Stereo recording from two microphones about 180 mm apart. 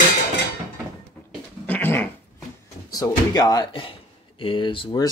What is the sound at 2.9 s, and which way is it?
Speech, 20° left (ahead or behind).